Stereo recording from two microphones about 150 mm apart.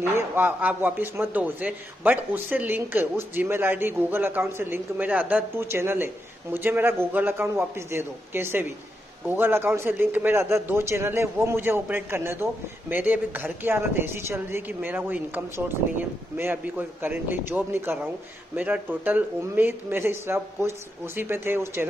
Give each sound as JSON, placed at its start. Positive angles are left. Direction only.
{"t": 0.0, "sound": "speech", "side_deg": -15}